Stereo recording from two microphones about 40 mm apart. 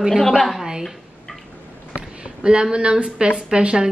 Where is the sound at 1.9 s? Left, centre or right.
Right.